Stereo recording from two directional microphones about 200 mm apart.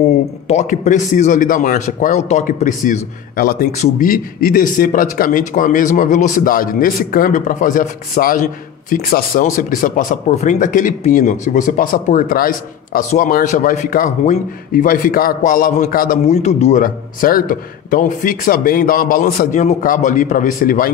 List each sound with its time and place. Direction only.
0.5 s a man's voice: 35° left (ahead or behind)
16.3 s a man's voice: 35° left (ahead or behind)